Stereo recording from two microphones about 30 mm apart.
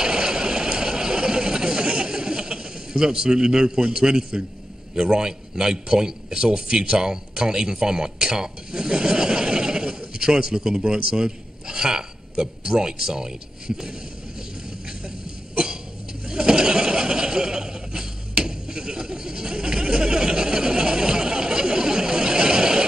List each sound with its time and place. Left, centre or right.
0.0 s vehicle: right
5.1 s a man's voice: right
15.5 s cough: right
16.3 s a sound: right